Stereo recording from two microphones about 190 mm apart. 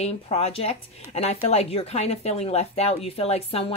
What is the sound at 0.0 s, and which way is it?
Speech, 35° left (ahead or behind).